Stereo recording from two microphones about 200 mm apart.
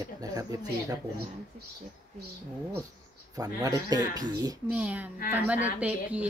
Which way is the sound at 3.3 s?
15° right (ahead or behind).